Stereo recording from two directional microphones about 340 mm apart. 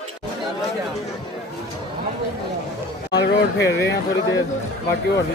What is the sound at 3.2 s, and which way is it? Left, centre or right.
Speech, left.